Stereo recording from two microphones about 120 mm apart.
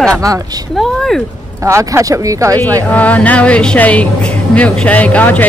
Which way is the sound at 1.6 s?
25° right (ahead or behind).